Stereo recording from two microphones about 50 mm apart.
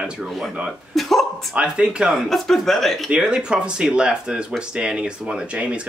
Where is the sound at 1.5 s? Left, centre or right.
Centre.